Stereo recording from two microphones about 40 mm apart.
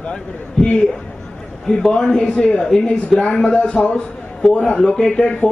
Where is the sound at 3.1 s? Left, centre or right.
Centre.